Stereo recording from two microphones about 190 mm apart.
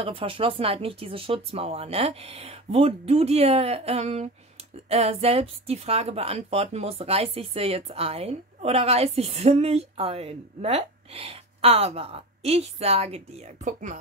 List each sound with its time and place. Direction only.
0.0 s speech: 30° right (ahead or behind)